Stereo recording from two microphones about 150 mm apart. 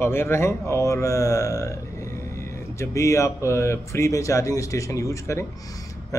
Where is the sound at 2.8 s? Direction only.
20° left (ahead or behind).